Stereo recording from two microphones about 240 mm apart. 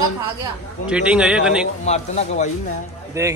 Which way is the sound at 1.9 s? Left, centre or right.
Left.